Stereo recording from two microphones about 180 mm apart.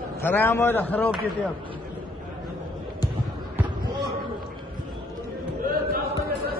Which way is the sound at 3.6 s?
25° right (ahead or behind).